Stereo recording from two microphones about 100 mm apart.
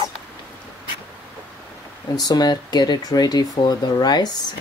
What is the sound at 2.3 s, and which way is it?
Speech, 45° left (ahead or behind).